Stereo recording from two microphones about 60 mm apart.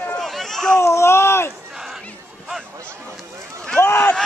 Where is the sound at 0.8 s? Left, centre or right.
Left.